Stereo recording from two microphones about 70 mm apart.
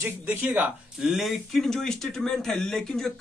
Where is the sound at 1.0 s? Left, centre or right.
Centre.